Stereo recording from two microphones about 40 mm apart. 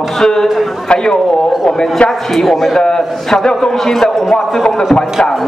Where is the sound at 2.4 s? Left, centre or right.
Centre.